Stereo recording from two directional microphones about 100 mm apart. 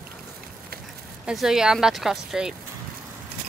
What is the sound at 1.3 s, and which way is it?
Speech, 5° right (ahead or behind).